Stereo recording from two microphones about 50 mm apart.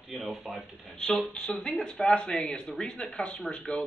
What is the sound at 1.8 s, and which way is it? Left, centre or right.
Speech, centre.